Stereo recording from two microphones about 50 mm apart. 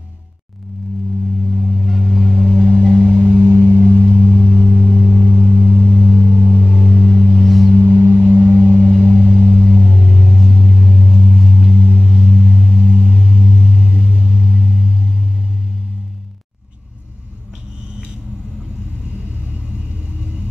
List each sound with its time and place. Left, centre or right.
1.5 s vehicle: centre
6.2 s a sound: centre
12.3 s gong: centre